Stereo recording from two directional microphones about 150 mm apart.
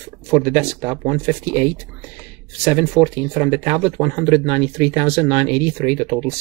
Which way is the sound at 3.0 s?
10° right (ahead or behind).